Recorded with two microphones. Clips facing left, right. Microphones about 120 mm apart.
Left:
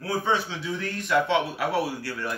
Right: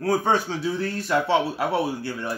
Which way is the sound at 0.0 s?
45° right (ahead or behind).